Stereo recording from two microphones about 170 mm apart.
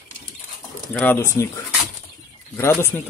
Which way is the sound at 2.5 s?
15° left (ahead or behind).